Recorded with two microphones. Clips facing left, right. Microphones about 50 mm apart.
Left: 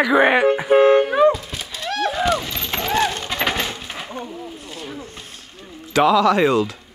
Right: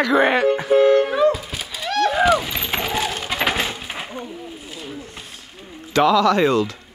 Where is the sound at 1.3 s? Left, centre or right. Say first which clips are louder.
Left 1 dB; centre.